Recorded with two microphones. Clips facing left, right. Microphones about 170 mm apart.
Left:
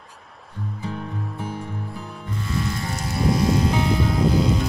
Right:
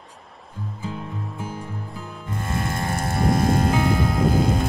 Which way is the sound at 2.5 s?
50° right (ahead or behind).